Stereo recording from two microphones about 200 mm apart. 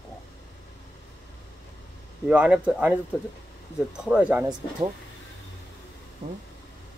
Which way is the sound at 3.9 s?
5° right (ahead or behind).